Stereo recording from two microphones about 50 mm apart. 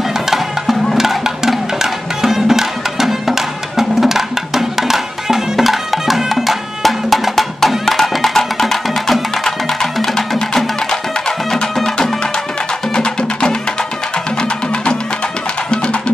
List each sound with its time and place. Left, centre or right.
0.9 s music: centre